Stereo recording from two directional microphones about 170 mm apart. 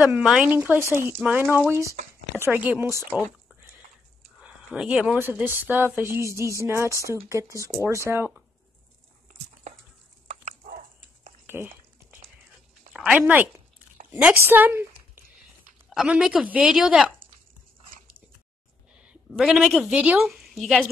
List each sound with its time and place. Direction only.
0.0 s speech: 5° right (ahead or behind)
4.4 s speech: 5° right (ahead or behind)
11.4 s a sound: 10° right (ahead or behind)
13.2 s a woman's voice: 10° right (ahead or behind)
15.9 s a woman's voice: 5° right (ahead or behind)
18.9 s a woman's voice: 5° right (ahead or behind)